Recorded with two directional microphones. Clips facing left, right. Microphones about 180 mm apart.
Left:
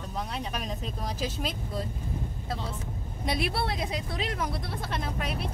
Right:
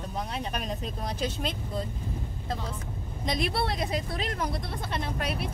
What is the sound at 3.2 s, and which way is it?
Speech, 5° left (ahead or behind).